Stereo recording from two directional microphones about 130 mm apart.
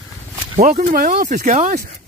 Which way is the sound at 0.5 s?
65° right (ahead or behind).